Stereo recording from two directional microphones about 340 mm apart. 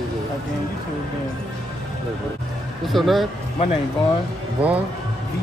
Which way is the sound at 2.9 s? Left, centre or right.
Centre.